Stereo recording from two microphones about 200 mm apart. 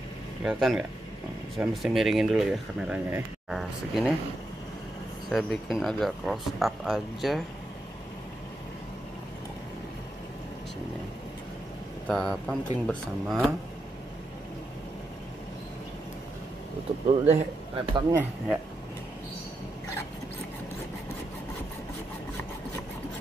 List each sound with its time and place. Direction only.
0.4 s speech: 5° right (ahead or behind)
5.3 s speech: centre (ahead or behind)
12.1 s speech: centre (ahead or behind)
17.1 s a man's voice: 30° right (ahead or behind)